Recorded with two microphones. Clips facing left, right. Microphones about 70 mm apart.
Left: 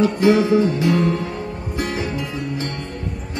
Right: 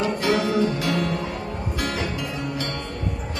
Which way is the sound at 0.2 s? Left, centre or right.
Left.